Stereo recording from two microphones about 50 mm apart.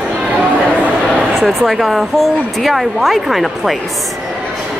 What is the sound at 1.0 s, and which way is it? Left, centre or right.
Speech, centre.